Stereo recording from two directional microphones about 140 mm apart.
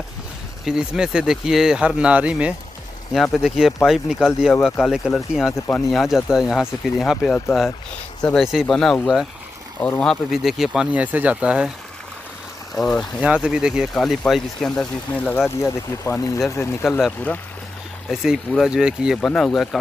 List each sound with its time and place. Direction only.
0.7 s speech: 5° right (ahead or behind)
12.7 s speech: 5° left (ahead or behind)
13.2 s speech: 5° right (ahead or behind); by 16.7 s 20° left (ahead or behind)
18.1 s speech: centre (ahead or behind)